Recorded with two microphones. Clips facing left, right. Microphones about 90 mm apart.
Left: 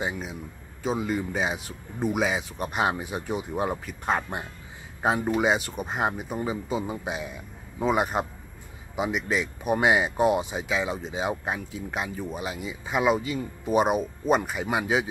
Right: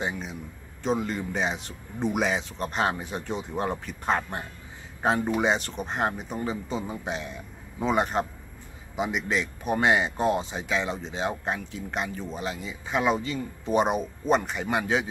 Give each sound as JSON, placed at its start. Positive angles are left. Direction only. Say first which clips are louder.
{"t": 0.0, "sound": "speech", "louder": "left 1 dB", "side_deg": 10}